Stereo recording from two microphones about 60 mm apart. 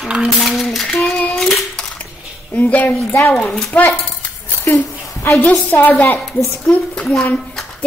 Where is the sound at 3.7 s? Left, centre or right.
Left.